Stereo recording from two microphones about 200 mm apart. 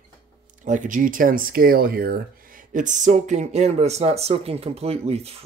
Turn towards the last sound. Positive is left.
turn(degrees=-30)  # may be behind; listen again after turning